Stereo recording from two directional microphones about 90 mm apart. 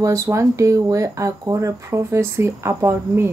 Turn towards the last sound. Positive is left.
turn(degrees=-30)  # may be behind; listen again after turning